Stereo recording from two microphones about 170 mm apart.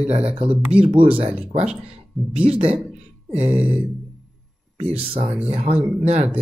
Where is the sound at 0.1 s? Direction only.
35° right (ahead or behind).